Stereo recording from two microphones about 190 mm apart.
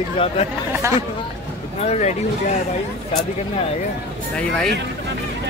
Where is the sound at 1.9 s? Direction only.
35° left (ahead or behind).